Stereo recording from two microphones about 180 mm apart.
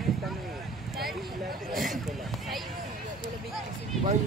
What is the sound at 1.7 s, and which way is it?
Speech, centre (ahead or behind).